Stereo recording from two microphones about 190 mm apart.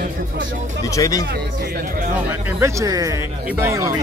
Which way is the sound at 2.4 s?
15° right (ahead or behind).